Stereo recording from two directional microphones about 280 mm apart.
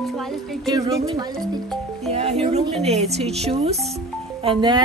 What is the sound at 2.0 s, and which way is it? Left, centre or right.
Music, right.